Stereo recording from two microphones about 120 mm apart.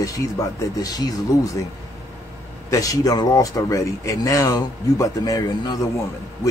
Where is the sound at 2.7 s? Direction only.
30° left (ahead or behind).